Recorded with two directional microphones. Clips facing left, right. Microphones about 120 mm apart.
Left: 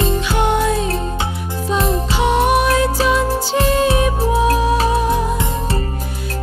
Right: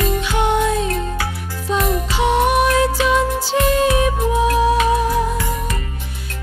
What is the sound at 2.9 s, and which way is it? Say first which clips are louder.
Music: left 1 dB; 35° left (ahead or behind).